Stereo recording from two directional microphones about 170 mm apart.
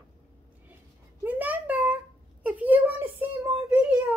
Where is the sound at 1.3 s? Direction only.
10° right (ahead or behind).